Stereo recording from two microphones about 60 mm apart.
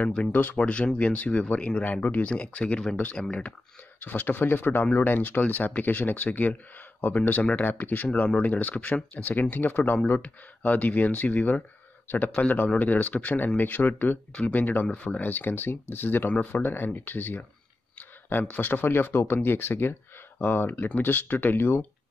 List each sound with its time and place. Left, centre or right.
0.3 s speech: left
4.0 s speech: left
8.1 s speech: centre
9.1 s speech: left
9.4 s speech: left